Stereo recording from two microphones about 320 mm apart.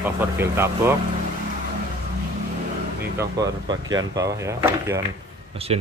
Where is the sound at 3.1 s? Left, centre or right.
Centre.